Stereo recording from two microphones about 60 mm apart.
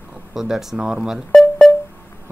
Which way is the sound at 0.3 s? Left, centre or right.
Centre.